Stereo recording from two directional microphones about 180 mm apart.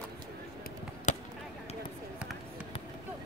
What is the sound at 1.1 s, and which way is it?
Basketball bounce, 40° left (ahead or behind).